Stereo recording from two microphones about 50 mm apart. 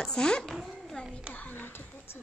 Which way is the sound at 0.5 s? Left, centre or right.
Centre.